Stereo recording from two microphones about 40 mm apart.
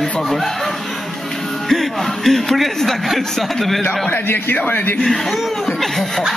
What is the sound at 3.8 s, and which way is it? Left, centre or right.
Speech, left.